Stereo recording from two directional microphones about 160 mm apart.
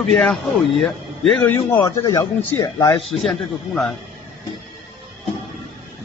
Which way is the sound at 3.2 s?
Centre (ahead or behind).